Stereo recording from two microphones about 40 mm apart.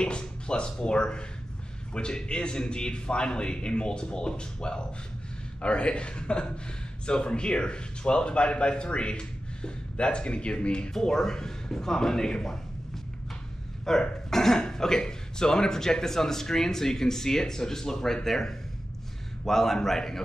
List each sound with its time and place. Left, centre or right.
0.0 s speech: left
10.9 s speech: centre
13.9 s speech: centre